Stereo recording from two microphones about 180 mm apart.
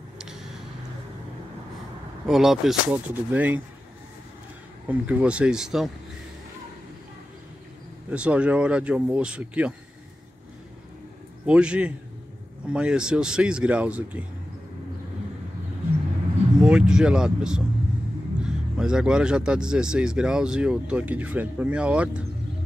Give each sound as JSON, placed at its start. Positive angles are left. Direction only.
{"t": 0.2, "sound": "vehicle", "side_deg": -5}
{"t": 2.2, "sound": "speech", "side_deg": 0}
{"t": 4.8, "sound": "speech", "side_deg": -10}
{"t": 8.1, "sound": "speech", "side_deg": -5}
{"t": 11.4, "sound": "speech", "side_deg": -5}
{"t": 16.5, "sound": "speech", "side_deg": -5}